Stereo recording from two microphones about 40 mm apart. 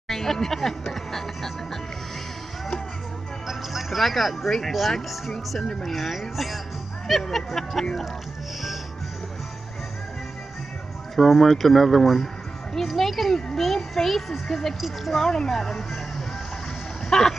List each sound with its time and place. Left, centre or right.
0.1 s music: centre
3.4 s music: centre
4.9 s a child's voice: centre
11.1 s a child's voice: centre
17.1 s speech: centre